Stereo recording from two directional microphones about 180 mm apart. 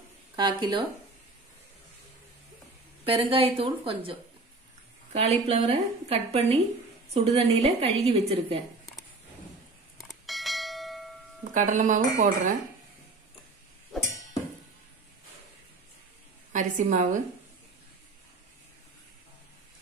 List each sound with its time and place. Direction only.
0.4 s speech: 25° right (ahead or behind)
3.1 s a woman's voice: 30° right (ahead or behind)
9.9 s bell: centre (ahead or behind)
11.5 s speech: 45° right (ahead or behind)
13.9 s a sound: centre (ahead or behind)
16.5 s speech: 45° right (ahead or behind)